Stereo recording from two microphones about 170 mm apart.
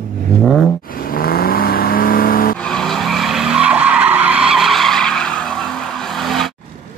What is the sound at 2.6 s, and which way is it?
Vehicle, 5° left (ahead or behind).